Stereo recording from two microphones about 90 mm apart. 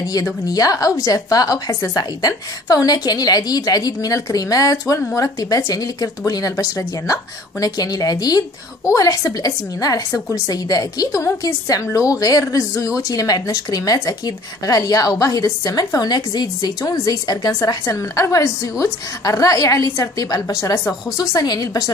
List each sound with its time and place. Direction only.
0.0 s a woman's voice: 45° left (ahead or behind)